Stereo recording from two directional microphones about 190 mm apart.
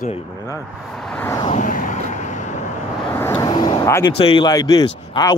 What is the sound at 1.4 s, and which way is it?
Vehicle, 40° left (ahead or behind).